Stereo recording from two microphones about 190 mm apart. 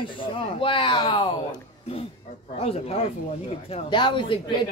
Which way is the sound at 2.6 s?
30° left (ahead or behind).